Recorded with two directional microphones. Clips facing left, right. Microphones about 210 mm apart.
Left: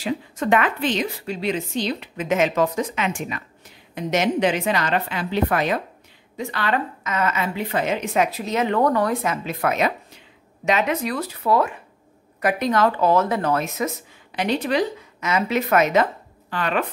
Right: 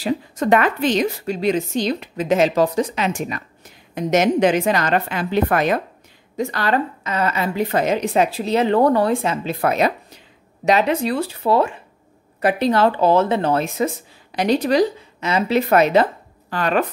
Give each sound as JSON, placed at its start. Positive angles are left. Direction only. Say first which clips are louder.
{"t": 0.0, "sound": "a woman's voice", "louder": "right 4 dB", "side_deg": -40}